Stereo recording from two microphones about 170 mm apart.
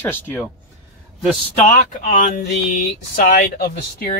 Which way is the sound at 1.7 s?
55° left (ahead or behind).